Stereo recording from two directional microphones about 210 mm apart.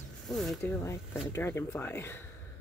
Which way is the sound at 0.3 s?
Centre (ahead or behind).